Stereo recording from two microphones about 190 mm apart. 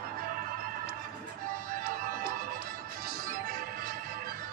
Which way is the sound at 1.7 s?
50° right (ahead or behind).